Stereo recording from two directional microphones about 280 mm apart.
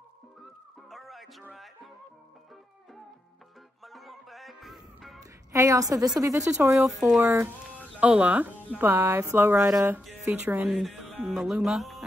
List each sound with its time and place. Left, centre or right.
0.8 s music: centre
3.8 s music: centre
5.2 s a sound: centre
6.1 s speech: centre
6.7 s speech: centre